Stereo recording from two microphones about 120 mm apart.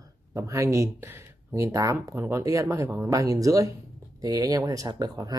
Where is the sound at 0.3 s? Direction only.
25° right (ahead or behind).